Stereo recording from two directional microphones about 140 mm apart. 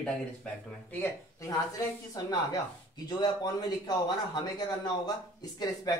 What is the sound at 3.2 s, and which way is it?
Speech, 30° left (ahead or behind).